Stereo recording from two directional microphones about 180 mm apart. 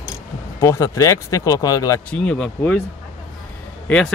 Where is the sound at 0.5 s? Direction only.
15° left (ahead or behind).